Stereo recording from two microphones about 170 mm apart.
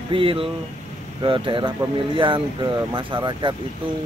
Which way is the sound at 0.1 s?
30° right (ahead or behind).